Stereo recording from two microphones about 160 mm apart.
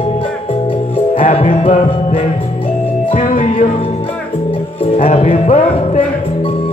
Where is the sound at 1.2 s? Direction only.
45° left (ahead or behind).